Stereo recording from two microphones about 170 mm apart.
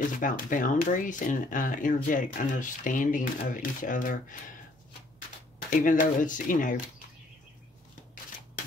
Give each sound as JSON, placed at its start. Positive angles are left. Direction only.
{"t": 0.2, "sound": "speech", "side_deg": 50}
{"t": 5.7, "sound": "speech", "side_deg": 50}